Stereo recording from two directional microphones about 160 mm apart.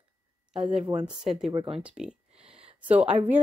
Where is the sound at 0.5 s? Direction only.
40° right (ahead or behind).